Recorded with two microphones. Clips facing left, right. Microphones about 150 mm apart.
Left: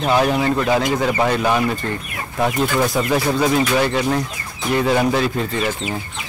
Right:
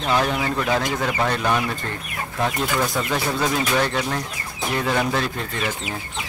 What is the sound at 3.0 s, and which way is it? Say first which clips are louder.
Speech: left 5 dB; 5° left (ahead or behind).